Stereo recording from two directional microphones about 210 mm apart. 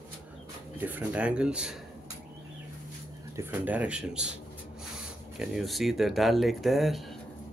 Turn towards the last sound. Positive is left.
turn(degrees=0)  # may be behind; listen again after turning